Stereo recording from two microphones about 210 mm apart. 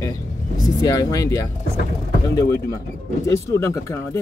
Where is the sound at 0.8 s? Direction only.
15° left (ahead or behind).